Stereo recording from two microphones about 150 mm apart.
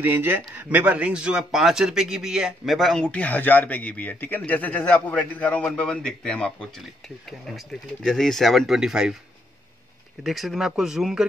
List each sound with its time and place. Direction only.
0.0 s speech: 15° right (ahead or behind)
10.2 s speech: centre (ahead or behind)